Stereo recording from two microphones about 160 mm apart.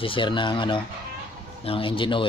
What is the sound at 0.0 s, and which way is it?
Speech, 30° left (ahead or behind).